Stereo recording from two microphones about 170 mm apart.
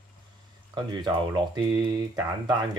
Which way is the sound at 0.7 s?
25° right (ahead or behind).